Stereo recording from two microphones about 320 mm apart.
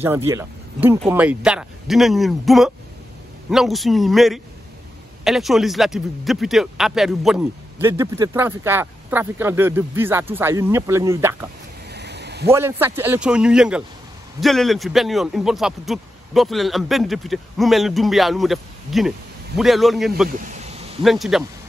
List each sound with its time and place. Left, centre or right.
0.0 s a man's voice: centre
11.9 s a sound: right
12.4 s a man's voice: centre
20.2 s vehicle: right
21.0 s speech: centre